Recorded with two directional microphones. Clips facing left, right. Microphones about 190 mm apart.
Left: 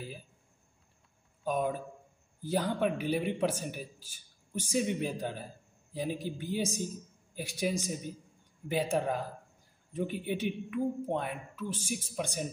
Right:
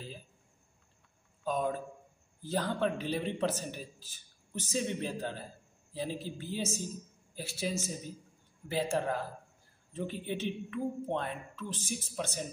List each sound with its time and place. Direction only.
1.4 s a man's voice: 10° left (ahead or behind)